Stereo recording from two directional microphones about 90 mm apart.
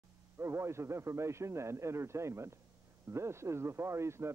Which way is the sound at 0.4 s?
30° right (ahead or behind).